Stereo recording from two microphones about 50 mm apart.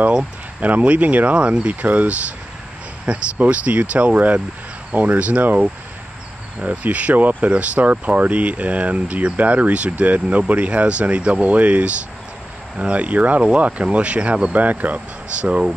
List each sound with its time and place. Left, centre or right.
0.6 s speech: right
14.5 s speech: right